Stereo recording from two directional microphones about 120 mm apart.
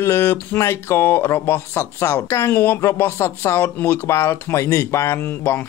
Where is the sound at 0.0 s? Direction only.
20° left (ahead or behind).